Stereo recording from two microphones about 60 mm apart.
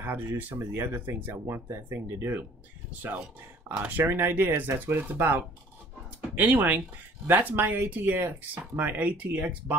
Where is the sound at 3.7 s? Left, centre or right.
Right.